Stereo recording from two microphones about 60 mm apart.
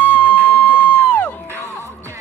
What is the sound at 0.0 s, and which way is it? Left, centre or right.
Music, left.